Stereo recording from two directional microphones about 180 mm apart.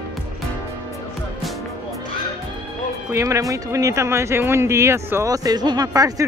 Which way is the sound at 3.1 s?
20° right (ahead or behind).